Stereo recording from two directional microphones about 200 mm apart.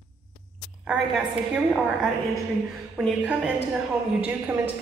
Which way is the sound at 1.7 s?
Centre (ahead or behind).